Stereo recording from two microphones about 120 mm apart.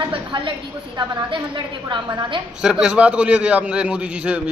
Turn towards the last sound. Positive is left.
turn(degrees=-10)  # may be behind; listen again after turning